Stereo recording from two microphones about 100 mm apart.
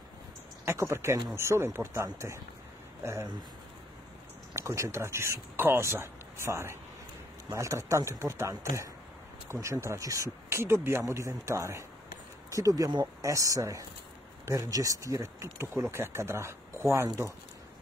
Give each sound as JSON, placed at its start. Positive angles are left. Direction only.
{"t": 0.7, "sound": "speech", "side_deg": -30}
{"t": 4.6, "sound": "speech", "side_deg": -30}